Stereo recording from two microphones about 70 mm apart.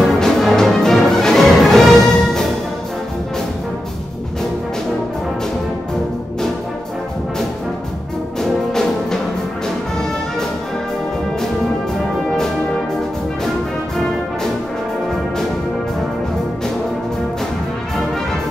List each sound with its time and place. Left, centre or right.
0.0 s music: centre
8.4 s brass instrument: centre